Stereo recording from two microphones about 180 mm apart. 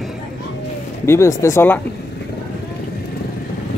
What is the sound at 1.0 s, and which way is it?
Speech, 15° left (ahead or behind).